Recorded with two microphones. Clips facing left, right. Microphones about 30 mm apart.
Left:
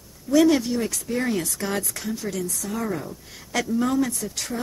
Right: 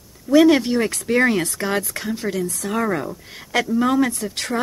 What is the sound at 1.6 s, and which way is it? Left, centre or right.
Speech, right.